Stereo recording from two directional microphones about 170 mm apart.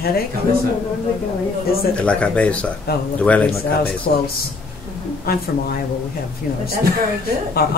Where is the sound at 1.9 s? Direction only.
5° left (ahead or behind).